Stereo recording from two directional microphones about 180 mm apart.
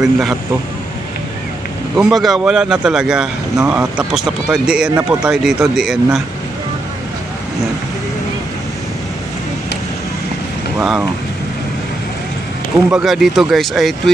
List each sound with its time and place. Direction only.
0.0 s speech: centre (ahead or behind)
2.0 s speech: centre (ahead or behind)
4.9 s speech: 15° right (ahead or behind)
5.3 s speech: 5° right (ahead or behind)
10.8 s speech: 5° right (ahead or behind)
12.9 s speech: centre (ahead or behind)